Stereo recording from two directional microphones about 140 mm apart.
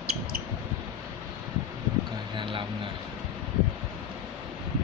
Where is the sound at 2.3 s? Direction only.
35° right (ahead or behind).